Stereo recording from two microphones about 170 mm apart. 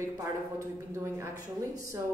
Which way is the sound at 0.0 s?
15° right (ahead or behind).